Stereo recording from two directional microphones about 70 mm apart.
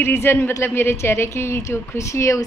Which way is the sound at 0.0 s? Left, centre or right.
Left.